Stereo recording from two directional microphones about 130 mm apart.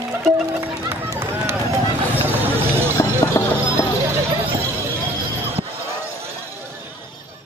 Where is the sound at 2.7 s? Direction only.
15° right (ahead or behind).